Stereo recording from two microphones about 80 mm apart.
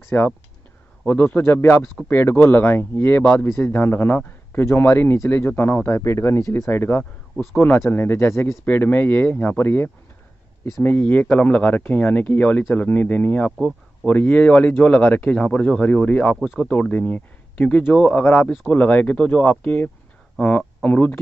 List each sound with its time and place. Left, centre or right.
0.1 s speech: left
8.6 s speech: left